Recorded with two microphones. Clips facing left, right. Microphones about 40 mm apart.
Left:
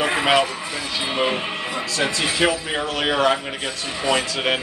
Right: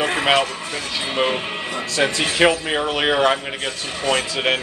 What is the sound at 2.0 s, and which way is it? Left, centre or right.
Speech, right.